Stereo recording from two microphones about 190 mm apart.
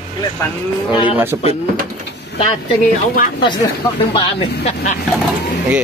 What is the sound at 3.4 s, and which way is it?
Speech, 25° left (ahead or behind).